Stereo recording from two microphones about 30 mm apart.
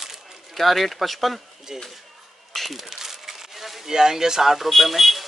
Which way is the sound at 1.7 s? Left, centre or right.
Centre.